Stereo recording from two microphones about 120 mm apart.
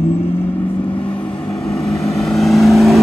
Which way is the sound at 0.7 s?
45° left (ahead or behind).